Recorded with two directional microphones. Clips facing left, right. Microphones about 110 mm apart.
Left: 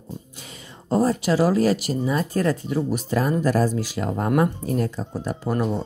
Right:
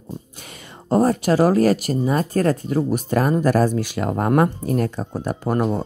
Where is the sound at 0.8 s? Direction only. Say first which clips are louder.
Right 3 dB; 55° right (ahead or behind).